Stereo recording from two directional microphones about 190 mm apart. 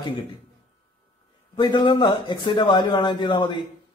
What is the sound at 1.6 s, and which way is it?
A man's voice, 25° left (ahead or behind).